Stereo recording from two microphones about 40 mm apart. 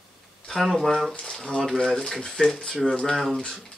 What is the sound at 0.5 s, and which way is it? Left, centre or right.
Speech, centre.